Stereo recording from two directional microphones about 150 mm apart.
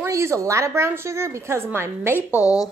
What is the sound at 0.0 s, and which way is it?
A woman's voice, 20° right (ahead or behind).